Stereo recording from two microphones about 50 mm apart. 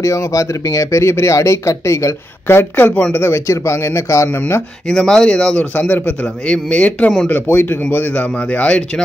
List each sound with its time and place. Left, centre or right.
0.0 s speech: left
0.9 s speech: left
2.4 s speech: left
3.4 s a man's voice: left
4.8 s speech: centre
5.8 s a man's voice: left
6.4 s speech: left
7.4 s speech: left
8.1 s speech: left